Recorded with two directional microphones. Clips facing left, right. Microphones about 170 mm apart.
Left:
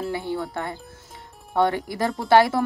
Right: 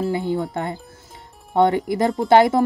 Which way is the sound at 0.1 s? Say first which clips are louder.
Right 5 dB; 20° right (ahead or behind).